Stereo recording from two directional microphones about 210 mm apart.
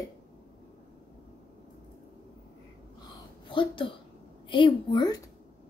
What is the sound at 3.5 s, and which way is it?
A child's voice, 25° left (ahead or behind).